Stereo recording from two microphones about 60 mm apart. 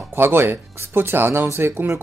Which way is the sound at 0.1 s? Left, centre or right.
Right.